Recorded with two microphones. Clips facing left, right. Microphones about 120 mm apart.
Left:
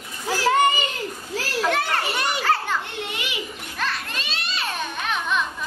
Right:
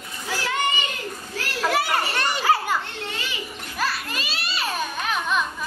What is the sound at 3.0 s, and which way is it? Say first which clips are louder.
Children playing: left 1 dB; 15° left (ahead or behind).